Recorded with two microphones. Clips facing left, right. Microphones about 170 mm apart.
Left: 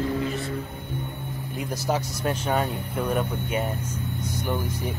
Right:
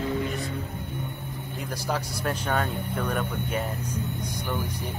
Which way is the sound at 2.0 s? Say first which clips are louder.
Left 1 dB; 10° right (ahead or behind).